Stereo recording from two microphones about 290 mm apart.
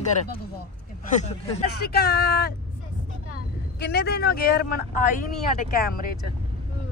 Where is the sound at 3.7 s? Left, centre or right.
Left.